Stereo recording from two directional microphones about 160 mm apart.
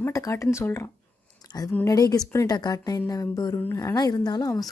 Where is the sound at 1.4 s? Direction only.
25° left (ahead or behind).